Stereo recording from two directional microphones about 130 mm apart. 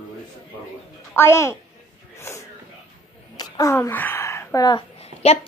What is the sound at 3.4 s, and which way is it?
Speech, 25° left (ahead or behind).